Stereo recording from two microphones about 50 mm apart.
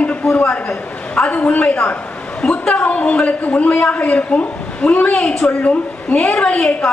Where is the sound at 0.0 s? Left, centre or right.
Left.